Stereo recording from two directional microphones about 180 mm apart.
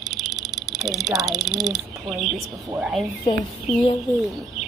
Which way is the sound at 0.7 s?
20° right (ahead or behind).